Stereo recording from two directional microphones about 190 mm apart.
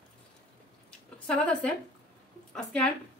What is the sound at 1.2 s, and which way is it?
A woman's voice, 5° left (ahead or behind).